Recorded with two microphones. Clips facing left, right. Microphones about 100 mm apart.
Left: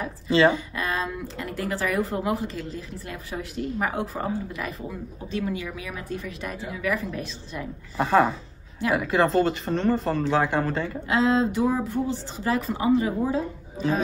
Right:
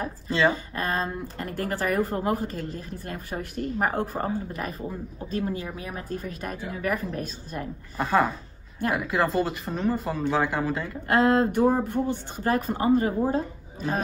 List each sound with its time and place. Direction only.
0.3 s speech: centre (ahead or behind)
0.7 s a woman's voice: 40° right (ahead or behind)
8.0 s speech: centre (ahead or behind)
11.1 s a woman's voice: 50° right (ahead or behind)